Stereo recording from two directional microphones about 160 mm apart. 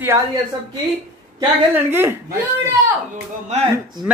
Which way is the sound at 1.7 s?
15° right (ahead or behind).